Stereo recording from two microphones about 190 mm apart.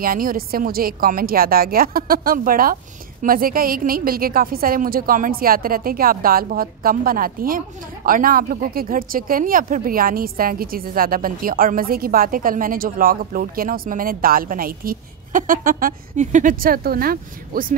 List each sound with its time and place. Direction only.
0.0 s a woman's voice: 50° right (ahead or behind)